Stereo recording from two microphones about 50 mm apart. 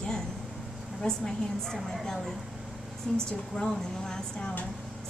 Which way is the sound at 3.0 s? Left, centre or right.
Left.